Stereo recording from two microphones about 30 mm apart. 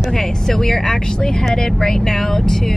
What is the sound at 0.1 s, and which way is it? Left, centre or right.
Speech, centre.